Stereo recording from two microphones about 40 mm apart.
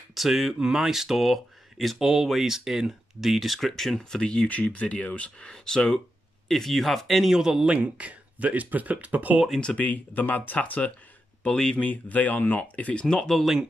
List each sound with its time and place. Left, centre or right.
0.1 s speech: centre
4.0 s speech: left
5.5 s speech: centre
6.5 s speech: centre
7.3 s speech: centre
7.7 s speech: right
9.8 s speech: left
13.0 s speech: centre